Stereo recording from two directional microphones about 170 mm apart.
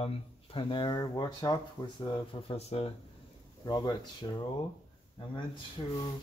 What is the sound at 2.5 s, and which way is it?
Speech, 35° left (ahead or behind).